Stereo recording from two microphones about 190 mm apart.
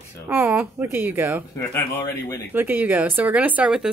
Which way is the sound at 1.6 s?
15° left (ahead or behind).